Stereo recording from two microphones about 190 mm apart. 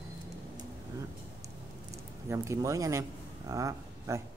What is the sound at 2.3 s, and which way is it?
Speech, 15° right (ahead or behind).